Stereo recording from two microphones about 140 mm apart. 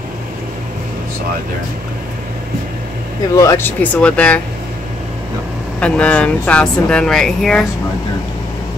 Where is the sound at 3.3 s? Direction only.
20° left (ahead or behind).